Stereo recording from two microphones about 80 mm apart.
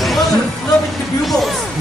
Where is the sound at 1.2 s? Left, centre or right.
Centre.